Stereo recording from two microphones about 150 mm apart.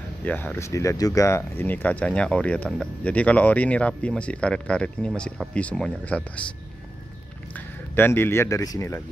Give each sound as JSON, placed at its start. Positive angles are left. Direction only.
{"t": 0.2, "sound": "speech", "side_deg": 10}
{"t": 7.5, "sound": "speech", "side_deg": 15}